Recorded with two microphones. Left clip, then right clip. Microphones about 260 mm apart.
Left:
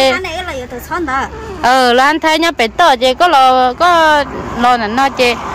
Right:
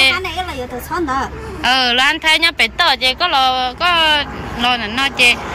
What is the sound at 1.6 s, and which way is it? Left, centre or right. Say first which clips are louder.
Speech: left 4 dB; left.